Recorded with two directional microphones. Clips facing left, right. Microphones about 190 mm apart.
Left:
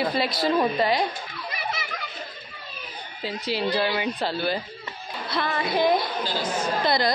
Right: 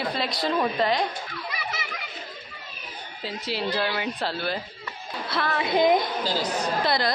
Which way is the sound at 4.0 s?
Centre (ahead or behind).